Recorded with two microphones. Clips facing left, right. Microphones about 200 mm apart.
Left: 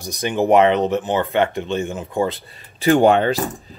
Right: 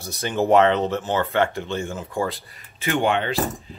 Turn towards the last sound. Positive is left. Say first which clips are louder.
# left 4 dB
turn(degrees=40)  # may be behind; listen again after turning